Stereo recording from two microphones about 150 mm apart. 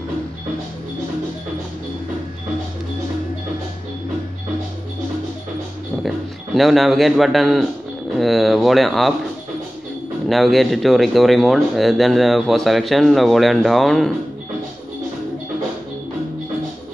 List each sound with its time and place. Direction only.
6.0 s a man's voice: centre (ahead or behind)
10.2 s speech: centre (ahead or behind)